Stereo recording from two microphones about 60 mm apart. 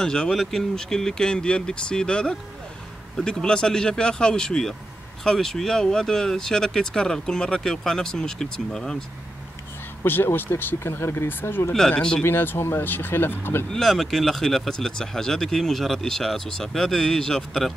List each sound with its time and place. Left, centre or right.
0.0 s speech: centre
10.0 s speech: left
13.7 s speech: centre